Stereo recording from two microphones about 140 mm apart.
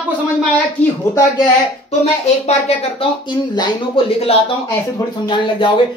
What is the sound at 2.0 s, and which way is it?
A woman's voice, 50° left (ahead or behind).